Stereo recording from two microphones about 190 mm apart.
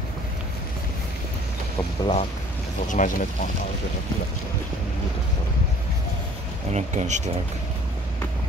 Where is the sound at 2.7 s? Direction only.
45° left (ahead or behind).